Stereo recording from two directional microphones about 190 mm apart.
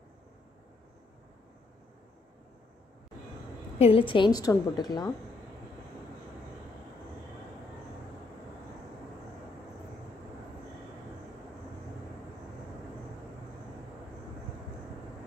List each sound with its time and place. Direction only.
3.7 s a woman's voice: 30° left (ahead or behind)